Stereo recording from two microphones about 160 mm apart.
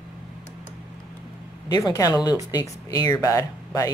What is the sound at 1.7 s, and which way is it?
Speech, 25° left (ahead or behind).